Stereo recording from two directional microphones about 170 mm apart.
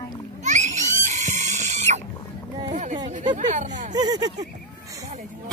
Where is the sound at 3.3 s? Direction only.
45° right (ahead or behind).